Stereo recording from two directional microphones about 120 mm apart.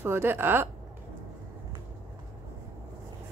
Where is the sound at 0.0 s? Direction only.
20° right (ahead or behind).